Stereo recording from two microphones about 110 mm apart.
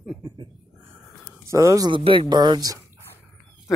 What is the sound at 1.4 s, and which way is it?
Speech, 30° right (ahead or behind).